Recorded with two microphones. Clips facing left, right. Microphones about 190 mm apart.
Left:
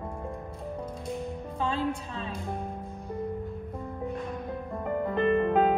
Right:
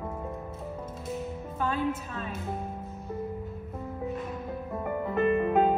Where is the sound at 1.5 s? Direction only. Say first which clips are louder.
Even; 25° left (ahead or behind).